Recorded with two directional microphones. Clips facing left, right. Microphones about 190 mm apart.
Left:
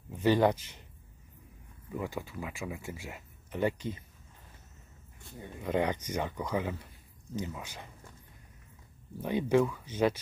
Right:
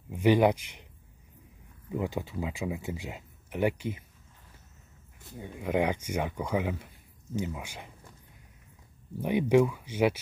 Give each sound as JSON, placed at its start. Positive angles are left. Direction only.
{"t": 0.1, "sound": "speech", "side_deg": -15}
{"t": 1.9, "sound": "speech", "side_deg": -20}
{"t": 5.2, "sound": "speech", "side_deg": -15}
{"t": 9.2, "sound": "speech", "side_deg": -15}